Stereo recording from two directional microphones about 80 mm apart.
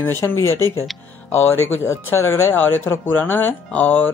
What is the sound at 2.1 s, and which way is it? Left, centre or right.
Speech, left.